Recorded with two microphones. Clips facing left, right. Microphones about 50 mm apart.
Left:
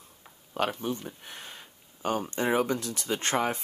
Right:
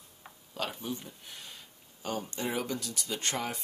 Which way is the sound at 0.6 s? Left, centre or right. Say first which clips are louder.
Left 7 dB; left.